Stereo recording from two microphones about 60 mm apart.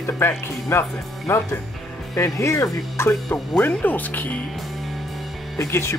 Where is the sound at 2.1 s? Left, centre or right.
Left.